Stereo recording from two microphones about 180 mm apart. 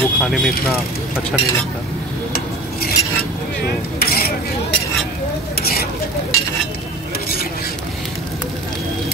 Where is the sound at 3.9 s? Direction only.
60° left (ahead or behind).